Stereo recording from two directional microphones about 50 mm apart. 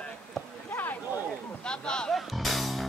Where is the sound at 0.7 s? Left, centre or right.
Left.